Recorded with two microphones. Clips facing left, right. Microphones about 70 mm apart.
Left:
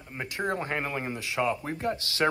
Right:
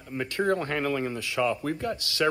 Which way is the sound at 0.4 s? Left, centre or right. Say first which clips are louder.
Right 4 dB; centre.